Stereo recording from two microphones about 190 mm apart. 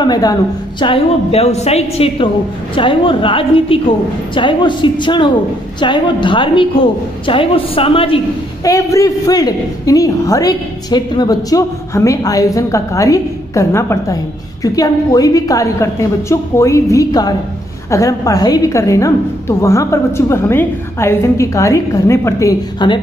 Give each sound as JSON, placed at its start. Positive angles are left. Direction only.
{"t": 0.0, "sound": "a woman's voice", "side_deg": 20}
{"t": 8.6, "sound": "a woman's voice", "side_deg": 15}